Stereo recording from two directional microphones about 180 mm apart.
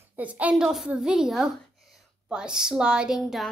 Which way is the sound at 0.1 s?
10° right (ahead or behind).